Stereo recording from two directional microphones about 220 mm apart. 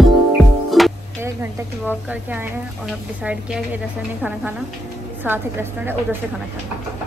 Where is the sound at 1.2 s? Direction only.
10° right (ahead or behind).